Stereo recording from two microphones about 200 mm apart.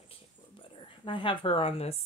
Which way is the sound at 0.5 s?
25° left (ahead or behind).